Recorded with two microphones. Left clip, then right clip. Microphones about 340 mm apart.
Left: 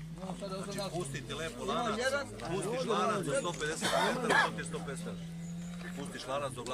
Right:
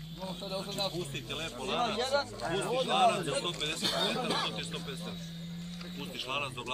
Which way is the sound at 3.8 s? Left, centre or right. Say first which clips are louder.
Left 2 dB; left.